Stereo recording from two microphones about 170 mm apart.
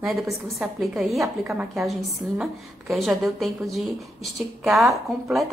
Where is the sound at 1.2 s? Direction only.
10° right (ahead or behind).